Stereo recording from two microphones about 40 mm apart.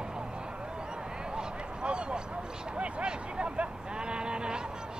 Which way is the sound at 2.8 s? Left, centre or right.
Right.